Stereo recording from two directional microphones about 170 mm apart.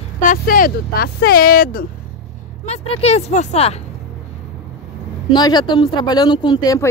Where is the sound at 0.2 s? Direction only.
55° left (ahead or behind).